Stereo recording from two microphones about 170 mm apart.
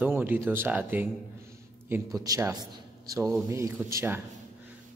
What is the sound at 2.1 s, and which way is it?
A man's voice, 20° right (ahead or behind).